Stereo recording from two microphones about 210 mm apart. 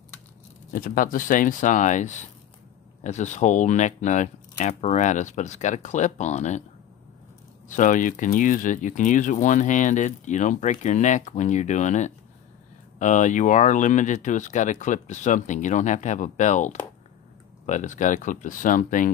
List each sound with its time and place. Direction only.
0.7 s speech: 40° left (ahead or behind)
7.6 s speech: 35° left (ahead or behind)